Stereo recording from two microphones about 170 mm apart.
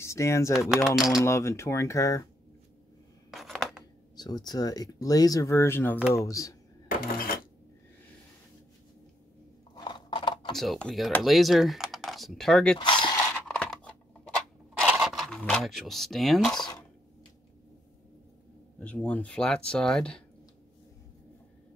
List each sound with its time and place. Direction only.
0.0 s speech: 15° left (ahead or behind)
0.9 s speech: centre (ahead or behind)
1.2 s speech: 15° left (ahead or behind)
3.3 s scissors: centre (ahead or behind)
4.2 s speech: 25° left (ahead or behind)
6.9 s coin: 55° left (ahead or behind)
9.8 s scissors: 25° left (ahead or behind)
10.5 s speech: centre (ahead or behind)
12.7 s speech: 25° left (ahead or behind)
13.3 s scissors: 10° left (ahead or behind)
14.9 s a sound: 5° right (ahead or behind)
16.5 s speech: 25° left (ahead or behind)
18.8 s speech: 5° left (ahead or behind)